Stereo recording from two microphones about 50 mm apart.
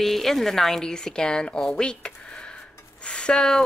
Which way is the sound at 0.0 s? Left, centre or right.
Centre.